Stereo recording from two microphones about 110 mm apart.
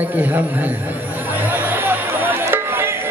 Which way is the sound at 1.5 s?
20° right (ahead or behind).